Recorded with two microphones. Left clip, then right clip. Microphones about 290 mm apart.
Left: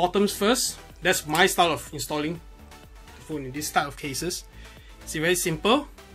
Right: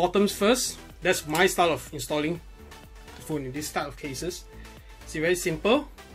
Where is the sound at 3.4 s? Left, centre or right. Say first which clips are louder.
Left 1 dB; centre.